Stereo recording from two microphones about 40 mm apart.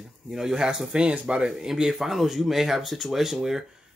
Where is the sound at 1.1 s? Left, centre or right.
Right.